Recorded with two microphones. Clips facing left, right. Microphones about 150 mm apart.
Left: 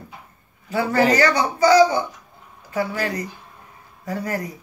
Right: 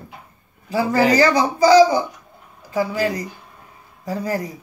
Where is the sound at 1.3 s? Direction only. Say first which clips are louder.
Right 3 dB; 30° right (ahead or behind).